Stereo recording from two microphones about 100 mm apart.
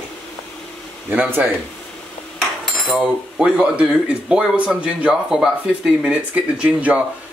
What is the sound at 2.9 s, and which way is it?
Speech, 10° right (ahead or behind).